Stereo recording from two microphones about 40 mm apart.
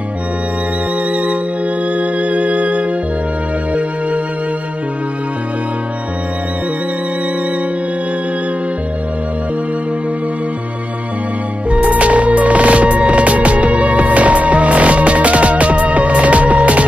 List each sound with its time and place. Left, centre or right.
1.1 s music: right
11.7 s music: right